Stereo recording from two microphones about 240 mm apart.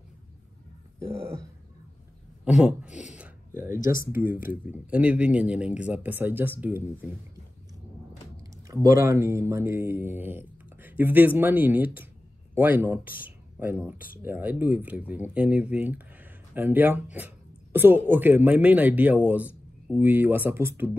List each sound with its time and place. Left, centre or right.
0.9 s grunt: centre
2.4 s speech: centre
2.9 s a sound: left
3.2 s a sound: centre
4.1 s speech: centre
8.9 s speech: centre